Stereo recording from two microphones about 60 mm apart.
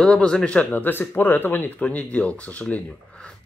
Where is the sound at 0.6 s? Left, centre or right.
Left.